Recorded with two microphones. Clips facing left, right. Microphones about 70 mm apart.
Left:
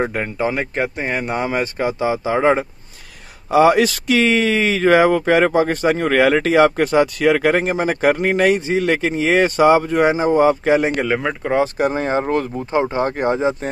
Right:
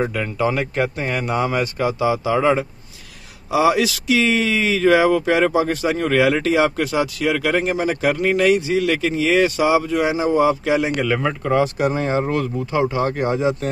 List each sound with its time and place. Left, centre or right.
0.0 s speech: left
0.5 s speech: left
3.4 s speech: left
11.1 s speech: left